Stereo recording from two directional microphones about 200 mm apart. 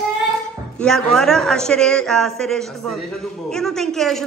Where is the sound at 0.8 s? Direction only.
5° left (ahead or behind).